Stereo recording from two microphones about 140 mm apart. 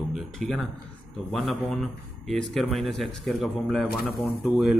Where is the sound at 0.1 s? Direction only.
Centre (ahead or behind).